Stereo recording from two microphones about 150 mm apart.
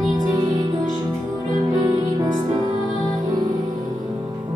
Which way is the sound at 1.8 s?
25° right (ahead or behind).